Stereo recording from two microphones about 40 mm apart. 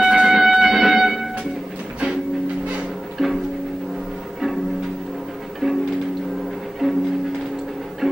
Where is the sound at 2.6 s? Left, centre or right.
Right.